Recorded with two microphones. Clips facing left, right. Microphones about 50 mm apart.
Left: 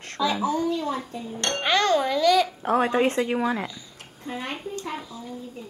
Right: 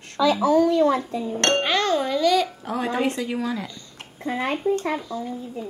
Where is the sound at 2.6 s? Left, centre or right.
Left.